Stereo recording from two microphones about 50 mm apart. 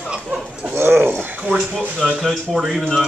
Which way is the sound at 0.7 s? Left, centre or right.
Right.